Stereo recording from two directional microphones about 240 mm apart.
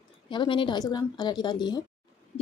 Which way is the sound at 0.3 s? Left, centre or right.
Centre.